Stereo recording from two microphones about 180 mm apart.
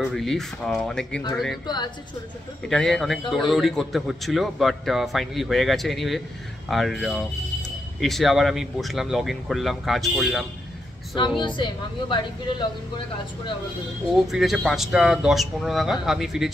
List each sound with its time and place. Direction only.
0.0 s a man's voice: centre (ahead or behind)
1.7 s a woman's voice: 25° left (ahead or behind)
2.7 s a man's voice: 5° left (ahead or behind)
11.1 s a woman's voice: 25° left (ahead or behind)
14.1 s a man's voice: centre (ahead or behind)